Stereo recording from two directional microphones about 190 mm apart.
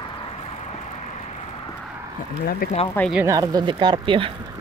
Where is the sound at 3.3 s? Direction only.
20° right (ahead or behind).